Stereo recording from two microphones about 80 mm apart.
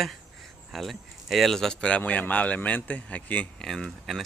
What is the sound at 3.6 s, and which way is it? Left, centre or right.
Speech, centre.